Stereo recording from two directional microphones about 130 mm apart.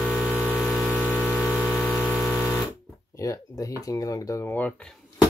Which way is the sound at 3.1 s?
25° left (ahead or behind).